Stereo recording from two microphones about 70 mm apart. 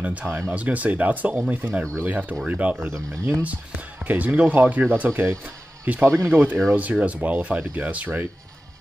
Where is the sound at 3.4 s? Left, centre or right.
Right.